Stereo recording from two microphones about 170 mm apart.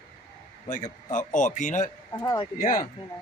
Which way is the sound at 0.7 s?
50° left (ahead or behind).